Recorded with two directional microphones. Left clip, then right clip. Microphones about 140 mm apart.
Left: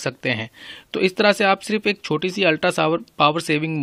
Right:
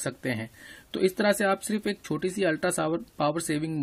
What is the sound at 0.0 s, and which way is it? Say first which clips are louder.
Speech: left 8 dB; 25° left (ahead or behind).